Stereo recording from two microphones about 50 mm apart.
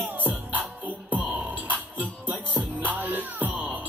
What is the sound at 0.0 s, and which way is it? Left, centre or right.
Music, right.